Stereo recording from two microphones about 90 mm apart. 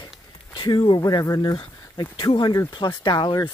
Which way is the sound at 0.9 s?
40° left (ahead or behind).